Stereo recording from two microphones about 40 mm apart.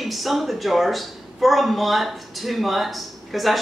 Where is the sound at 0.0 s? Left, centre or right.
Centre.